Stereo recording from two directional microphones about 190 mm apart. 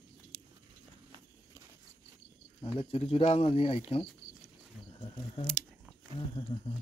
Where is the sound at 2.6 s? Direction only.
25° left (ahead or behind).